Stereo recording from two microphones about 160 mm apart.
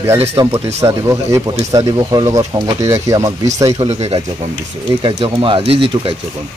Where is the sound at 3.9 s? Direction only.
45° right (ahead or behind).